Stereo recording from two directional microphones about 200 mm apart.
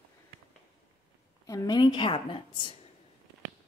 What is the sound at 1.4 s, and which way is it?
A woman's voice, 20° left (ahead or behind).